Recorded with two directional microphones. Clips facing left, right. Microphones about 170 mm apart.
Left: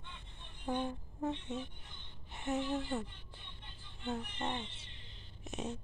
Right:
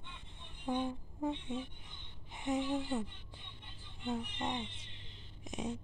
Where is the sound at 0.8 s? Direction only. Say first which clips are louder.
Right 1 dB; 10° right (ahead or behind).